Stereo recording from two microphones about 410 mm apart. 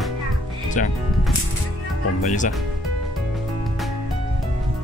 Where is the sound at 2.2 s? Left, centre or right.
Centre.